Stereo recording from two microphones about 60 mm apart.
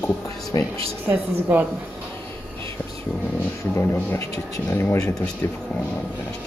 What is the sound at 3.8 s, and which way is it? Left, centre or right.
Speech, left.